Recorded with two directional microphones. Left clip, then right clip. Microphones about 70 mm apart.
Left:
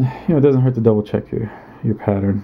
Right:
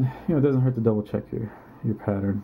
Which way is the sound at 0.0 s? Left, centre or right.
Left.